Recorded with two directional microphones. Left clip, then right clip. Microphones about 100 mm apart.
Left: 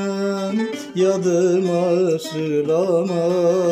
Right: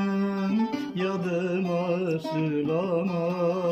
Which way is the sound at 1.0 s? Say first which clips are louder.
Left 13 dB; 40° left (ahead or behind).